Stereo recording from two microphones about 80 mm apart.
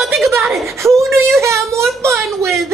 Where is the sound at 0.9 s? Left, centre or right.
Right.